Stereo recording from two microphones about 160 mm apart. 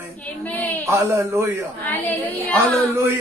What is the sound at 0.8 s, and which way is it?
Speech, 20° right (ahead or behind).